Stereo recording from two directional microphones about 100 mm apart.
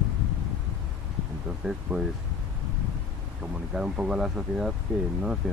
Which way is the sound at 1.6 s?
5° right (ahead or behind).